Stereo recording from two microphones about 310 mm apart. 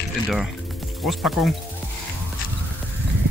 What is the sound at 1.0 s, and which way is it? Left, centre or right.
Speech, centre.